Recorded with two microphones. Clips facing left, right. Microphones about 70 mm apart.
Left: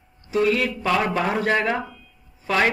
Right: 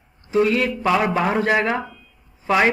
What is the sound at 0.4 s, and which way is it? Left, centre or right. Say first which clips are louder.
A man's voice: right 2 dB; centre.